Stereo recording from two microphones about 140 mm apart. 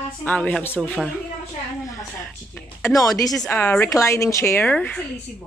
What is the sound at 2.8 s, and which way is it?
Speech, 25° left (ahead or behind).